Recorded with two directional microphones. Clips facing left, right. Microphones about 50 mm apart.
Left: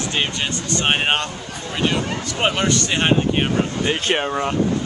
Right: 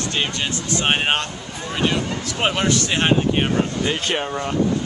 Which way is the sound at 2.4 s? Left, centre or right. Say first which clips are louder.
Even; centre.